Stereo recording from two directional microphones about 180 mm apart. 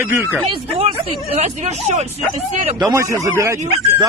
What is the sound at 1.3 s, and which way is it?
Speech, 40° right (ahead or behind).